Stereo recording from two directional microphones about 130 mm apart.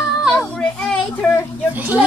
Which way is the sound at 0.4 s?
10° left (ahead or behind).